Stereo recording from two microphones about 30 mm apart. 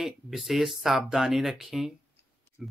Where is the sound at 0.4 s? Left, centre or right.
Centre.